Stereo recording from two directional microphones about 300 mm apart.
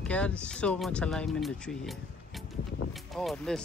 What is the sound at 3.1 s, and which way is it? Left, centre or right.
Speech, centre.